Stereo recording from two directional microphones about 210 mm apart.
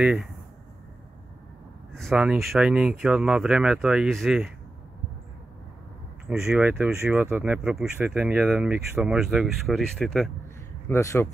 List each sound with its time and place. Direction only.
0.0 s speech: 5° right (ahead or behind)
2.0 s speech: centre (ahead or behind)
6.2 s speech: 15° right (ahead or behind)
10.9 s speech: 15° left (ahead or behind)